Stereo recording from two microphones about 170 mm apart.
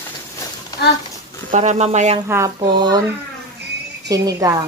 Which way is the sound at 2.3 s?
20° right (ahead or behind).